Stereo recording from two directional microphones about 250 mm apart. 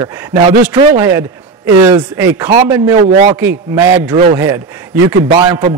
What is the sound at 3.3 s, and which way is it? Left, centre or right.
A man's voice, centre.